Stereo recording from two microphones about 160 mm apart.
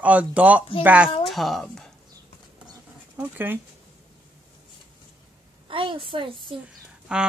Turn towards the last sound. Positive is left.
turn(degrees=-5)  # may be behind; listen again after turning